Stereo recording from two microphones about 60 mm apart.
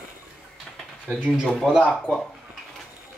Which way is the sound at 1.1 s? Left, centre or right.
Centre.